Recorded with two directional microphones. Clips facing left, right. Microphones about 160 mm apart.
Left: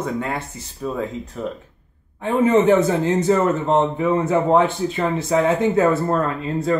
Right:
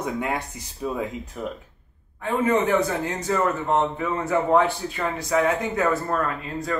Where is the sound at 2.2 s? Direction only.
25° left (ahead or behind).